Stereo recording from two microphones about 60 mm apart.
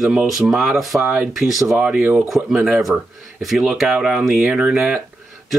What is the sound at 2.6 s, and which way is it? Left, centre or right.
Speech, centre.